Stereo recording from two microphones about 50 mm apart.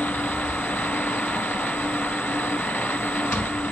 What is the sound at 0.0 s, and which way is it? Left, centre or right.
Vehicle, left.